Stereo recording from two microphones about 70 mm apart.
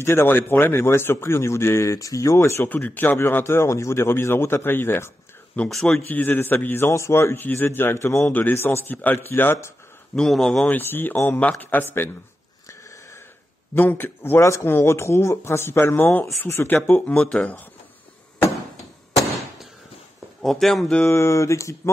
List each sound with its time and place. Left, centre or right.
0.0 s a man's voice: left
2.6 s a man's voice: left
5.5 s a man's voice: left
8.2 s a man's voice: left
10.1 s a man's voice: centre
10.7 s a man's voice: left
13.7 s a man's voice: left
20.4 s speech: centre
21.1 s speech: left